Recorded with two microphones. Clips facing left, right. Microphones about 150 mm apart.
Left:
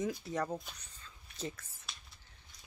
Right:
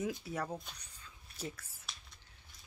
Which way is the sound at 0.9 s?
10° right (ahead or behind).